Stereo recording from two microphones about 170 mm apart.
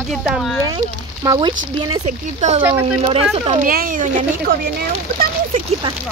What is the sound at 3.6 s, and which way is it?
Speech, 55° right (ahead or behind).